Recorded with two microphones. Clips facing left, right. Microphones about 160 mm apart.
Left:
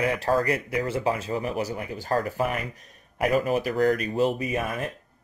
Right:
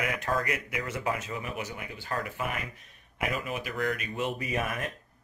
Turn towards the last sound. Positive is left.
turn(degrees=30)  # may be behind; listen again after turning